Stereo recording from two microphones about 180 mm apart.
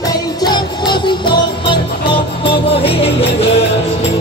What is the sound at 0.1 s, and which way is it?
Music, 20° left (ahead or behind).